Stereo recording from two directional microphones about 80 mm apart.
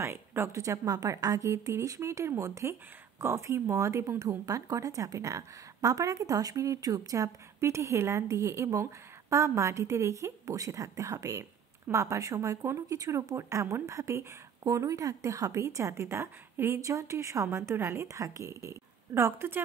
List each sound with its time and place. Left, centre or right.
0.0 s speech: right